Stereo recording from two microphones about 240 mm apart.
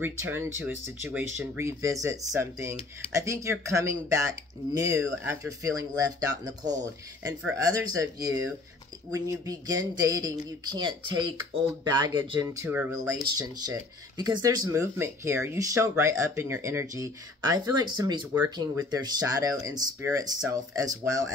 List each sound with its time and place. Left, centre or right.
0.0 s speech: centre